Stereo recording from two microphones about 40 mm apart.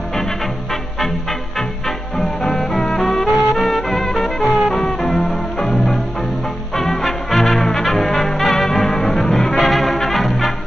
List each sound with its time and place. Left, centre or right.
2.1 s music: centre